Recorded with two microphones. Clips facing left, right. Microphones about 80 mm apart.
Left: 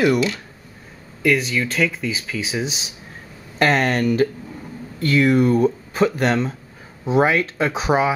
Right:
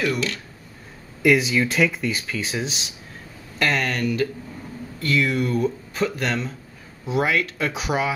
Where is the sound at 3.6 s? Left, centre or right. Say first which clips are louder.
Left 5 dB; left.